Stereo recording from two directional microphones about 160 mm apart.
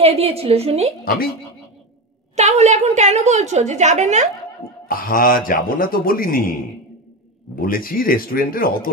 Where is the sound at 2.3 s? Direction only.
45° right (ahead or behind).